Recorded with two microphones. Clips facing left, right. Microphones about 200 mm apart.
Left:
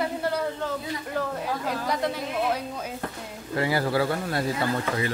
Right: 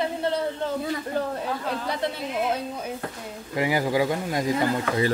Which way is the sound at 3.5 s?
15° right (ahead or behind).